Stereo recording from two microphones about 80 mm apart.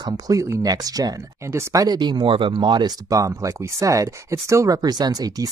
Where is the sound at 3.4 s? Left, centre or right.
Right.